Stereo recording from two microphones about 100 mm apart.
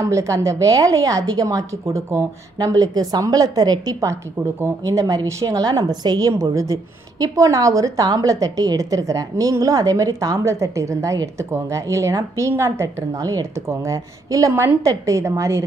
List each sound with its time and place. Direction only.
0.0 s a woman's voice: 30° right (ahead or behind)
2.5 s a woman's voice: 40° right (ahead or behind)